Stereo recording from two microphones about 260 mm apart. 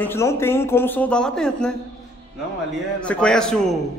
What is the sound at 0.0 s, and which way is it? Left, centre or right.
Speech, centre.